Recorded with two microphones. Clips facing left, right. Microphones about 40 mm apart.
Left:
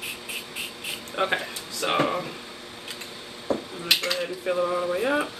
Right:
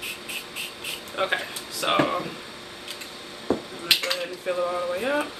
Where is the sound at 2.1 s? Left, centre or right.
Centre.